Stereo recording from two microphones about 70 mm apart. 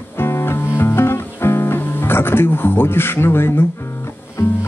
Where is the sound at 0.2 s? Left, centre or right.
Left.